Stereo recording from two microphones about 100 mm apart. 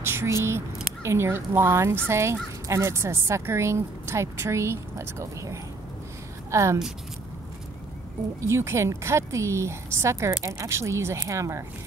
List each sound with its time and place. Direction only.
0.1 s a woman's voice: 25° right (ahead or behind)
8.4 s speech: 30° right (ahead or behind)